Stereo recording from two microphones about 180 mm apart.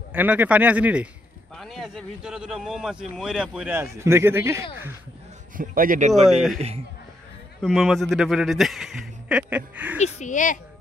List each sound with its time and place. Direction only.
0.1 s a man's voice: 10° right (ahead or behind)
5.6 s speech: 50° right (ahead or behind)
6.2 s a man's voice: centre (ahead or behind)
7.6 s a man's voice: centre (ahead or behind)
9.9 s speech: 40° left (ahead or behind)